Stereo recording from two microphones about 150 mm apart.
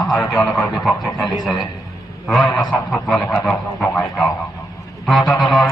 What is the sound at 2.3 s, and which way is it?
Speech, centre (ahead or behind).